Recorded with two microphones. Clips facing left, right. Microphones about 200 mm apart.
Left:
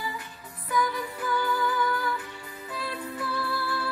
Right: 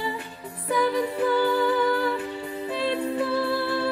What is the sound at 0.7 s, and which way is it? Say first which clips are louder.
Music: right 6 dB; 30° right (ahead or behind).